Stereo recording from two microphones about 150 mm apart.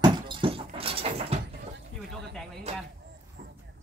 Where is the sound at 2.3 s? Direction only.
Centre (ahead or behind).